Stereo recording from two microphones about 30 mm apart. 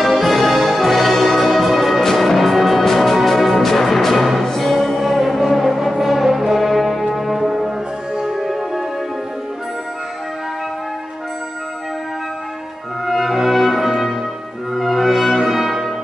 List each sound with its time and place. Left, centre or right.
0.0 s music: centre
8.2 s music: centre
8.5 s music: centre
13.0 s music: centre